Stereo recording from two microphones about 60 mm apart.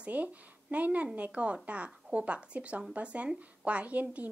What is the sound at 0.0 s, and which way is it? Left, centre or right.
A woman's voice, right.